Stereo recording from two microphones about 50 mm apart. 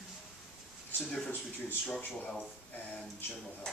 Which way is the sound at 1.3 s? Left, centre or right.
Left.